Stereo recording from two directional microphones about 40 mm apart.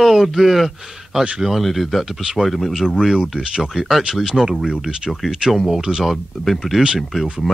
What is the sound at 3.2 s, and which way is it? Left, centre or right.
Speech, right.